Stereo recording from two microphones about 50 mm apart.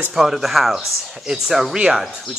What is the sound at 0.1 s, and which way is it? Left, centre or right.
Speech, centre.